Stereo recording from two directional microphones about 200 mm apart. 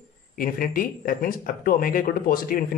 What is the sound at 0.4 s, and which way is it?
Speech, 45° left (ahead or behind).